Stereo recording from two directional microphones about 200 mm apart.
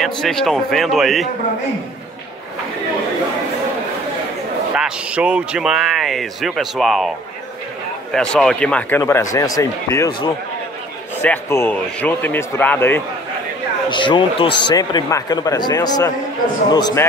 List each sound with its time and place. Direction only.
0.0 s speech: centre (ahead or behind)
4.7 s speech: 5° right (ahead or behind)
8.1 s speech: centre (ahead or behind)
11.2 s speech: 10° left (ahead or behind)
13.8 s speech: 25° left (ahead or behind)